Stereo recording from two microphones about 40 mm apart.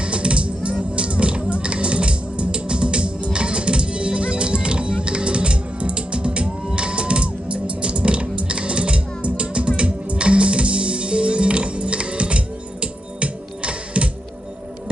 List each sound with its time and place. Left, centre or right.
0.0 s music: right